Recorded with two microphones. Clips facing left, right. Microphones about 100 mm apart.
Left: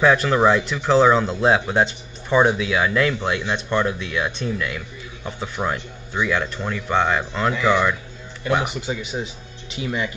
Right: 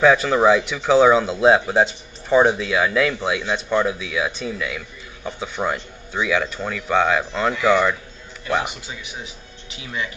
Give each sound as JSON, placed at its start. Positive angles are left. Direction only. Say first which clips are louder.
{"t": 0.0, "sound": "a man's voice", "louder": "right 1 dB", "side_deg": 0}
{"t": 9.0, "sound": "speech", "louder": "left 7 dB", "side_deg": 25}